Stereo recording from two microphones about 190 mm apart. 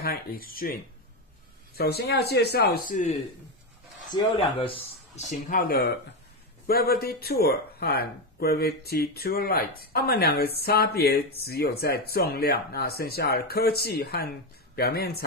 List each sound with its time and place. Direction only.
0.0 s speech: 50° left (ahead or behind)
1.8 s speech: 55° left (ahead or behind)
2.9 s speech: 40° left (ahead or behind)
4.1 s speech: 25° left (ahead or behind); by 15.2 s 55° left (ahead or behind)